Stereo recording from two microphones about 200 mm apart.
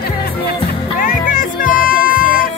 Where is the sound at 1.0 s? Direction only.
40° left (ahead or behind).